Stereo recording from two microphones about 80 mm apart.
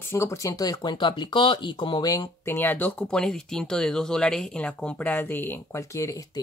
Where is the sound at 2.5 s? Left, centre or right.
Left.